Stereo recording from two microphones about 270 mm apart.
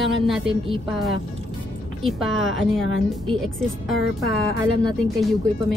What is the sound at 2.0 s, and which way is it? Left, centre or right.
Speech, centre.